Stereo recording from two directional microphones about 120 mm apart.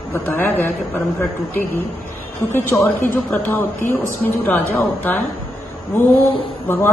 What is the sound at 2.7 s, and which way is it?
A woman's voice, 25° left (ahead or behind).